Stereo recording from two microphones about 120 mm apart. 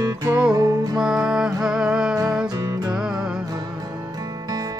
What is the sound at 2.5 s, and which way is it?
Music, 30° right (ahead or behind).